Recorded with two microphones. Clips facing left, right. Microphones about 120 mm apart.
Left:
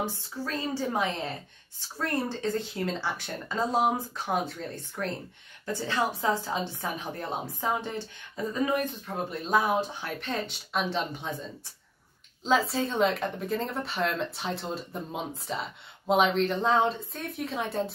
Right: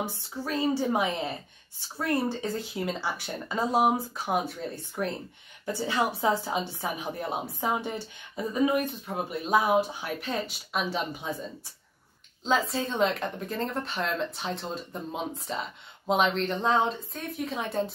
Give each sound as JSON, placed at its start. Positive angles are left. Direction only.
{"t": 0.0, "sound": "speech", "side_deg": -15}
{"t": 12.4, "sound": "speech", "side_deg": 0}